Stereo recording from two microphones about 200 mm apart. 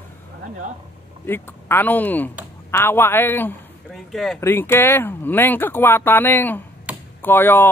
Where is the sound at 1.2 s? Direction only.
10° left (ahead or behind).